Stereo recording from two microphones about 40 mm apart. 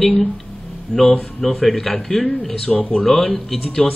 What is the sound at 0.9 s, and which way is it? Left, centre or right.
Speech, left.